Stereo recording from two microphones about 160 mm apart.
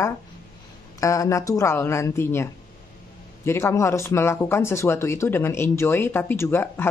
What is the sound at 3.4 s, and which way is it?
Speech, 15° left (ahead or behind).